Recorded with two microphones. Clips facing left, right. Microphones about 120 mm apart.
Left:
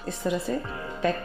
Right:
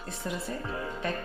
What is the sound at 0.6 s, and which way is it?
Music, centre (ahead or behind).